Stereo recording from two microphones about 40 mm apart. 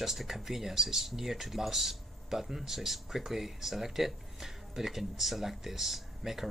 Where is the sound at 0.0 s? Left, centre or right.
Centre.